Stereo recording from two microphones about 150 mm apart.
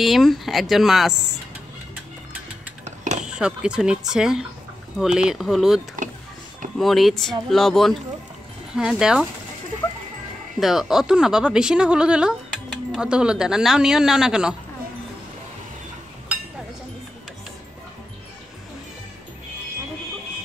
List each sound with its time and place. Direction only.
0.0 s speech: centre (ahead or behind)
2.8 s fire alarm: 50° right (ahead or behind)
3.3 s speech: 5° right (ahead or behind)
6.8 s speech: centre (ahead or behind)
10.6 s speech: centre (ahead or behind)